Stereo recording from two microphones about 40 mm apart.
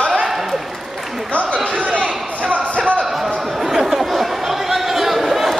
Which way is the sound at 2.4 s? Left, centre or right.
Right.